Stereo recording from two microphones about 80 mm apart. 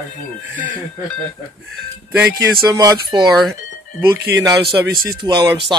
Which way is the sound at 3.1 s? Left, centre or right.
Right.